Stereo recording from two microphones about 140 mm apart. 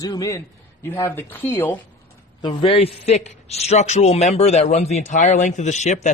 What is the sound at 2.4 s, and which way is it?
A man's voice, 40° left (ahead or behind).